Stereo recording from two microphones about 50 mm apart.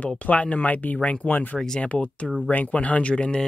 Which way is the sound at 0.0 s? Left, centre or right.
Left.